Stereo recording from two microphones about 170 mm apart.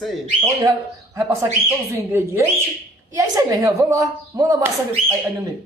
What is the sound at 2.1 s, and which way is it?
A woman's voice, 15° right (ahead or behind).